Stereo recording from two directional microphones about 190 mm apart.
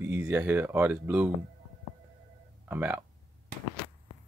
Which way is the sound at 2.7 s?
10° right (ahead or behind).